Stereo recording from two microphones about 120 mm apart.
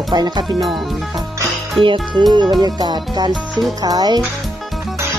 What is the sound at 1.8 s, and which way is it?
Speech, 45° right (ahead or behind).